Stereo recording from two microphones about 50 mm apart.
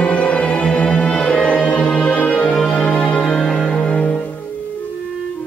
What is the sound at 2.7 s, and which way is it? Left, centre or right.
Music, centre.